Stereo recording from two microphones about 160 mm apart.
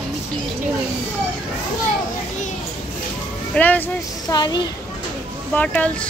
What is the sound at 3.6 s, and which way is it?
Speech, 10° left (ahead or behind).